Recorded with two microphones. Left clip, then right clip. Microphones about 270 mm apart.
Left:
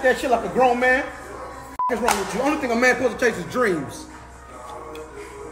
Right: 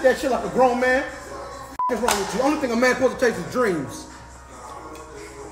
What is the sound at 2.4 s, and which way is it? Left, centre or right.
A woman's voice, centre.